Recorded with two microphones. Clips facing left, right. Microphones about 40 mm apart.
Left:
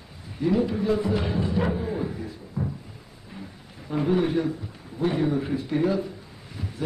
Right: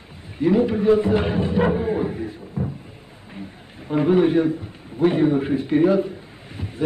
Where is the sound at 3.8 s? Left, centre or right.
Right.